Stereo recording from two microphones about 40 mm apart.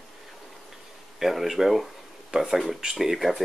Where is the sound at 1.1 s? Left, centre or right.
Centre.